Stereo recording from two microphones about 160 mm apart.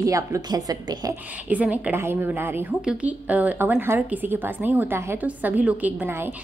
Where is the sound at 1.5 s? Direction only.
10° right (ahead or behind).